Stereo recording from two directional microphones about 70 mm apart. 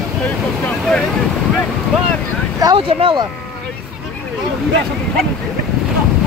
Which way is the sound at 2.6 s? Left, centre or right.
Right.